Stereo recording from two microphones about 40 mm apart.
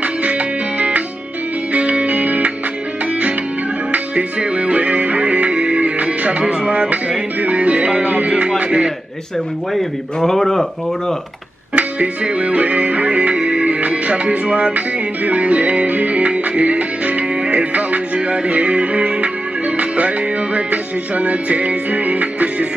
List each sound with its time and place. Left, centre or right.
0.0 s music: right
3.9 s music: right
9.8 s speech: centre
11.7 s music: right